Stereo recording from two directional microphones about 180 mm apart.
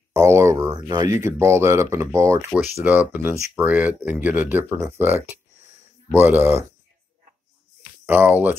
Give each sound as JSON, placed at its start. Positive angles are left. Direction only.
{"t": 0.1, "sound": "speech", "side_deg": -15}
{"t": 8.1, "sound": "speech", "side_deg": -10}